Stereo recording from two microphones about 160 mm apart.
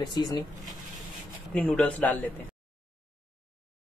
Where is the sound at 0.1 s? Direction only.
25° left (ahead or behind).